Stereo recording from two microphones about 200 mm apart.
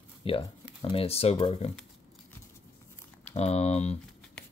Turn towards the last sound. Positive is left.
turn(degrees=30)  # may be behind; listen again after turning